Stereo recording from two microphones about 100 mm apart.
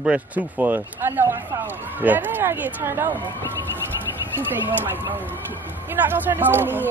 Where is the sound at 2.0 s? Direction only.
20° right (ahead or behind).